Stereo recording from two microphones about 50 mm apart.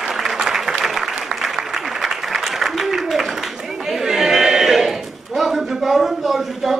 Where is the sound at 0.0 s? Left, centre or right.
Centre.